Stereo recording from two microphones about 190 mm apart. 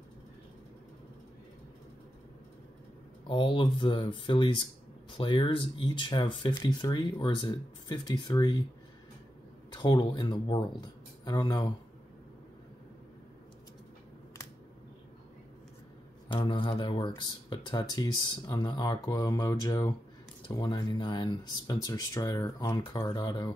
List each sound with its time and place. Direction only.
3.3 s speech: 25° left (ahead or behind)
9.8 s speech: 20° left (ahead or behind)
16.3 s speech: 25° left (ahead or behind)